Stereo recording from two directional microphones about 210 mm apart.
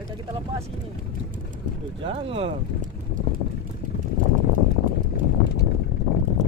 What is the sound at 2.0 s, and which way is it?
Speech, 25° right (ahead or behind).